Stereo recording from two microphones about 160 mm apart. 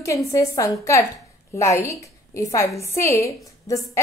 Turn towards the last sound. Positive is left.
turn(degrees=20)  # may be behind; listen again after turning